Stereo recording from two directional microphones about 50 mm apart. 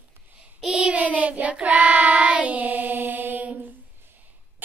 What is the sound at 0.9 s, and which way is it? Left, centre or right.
Child singing, right.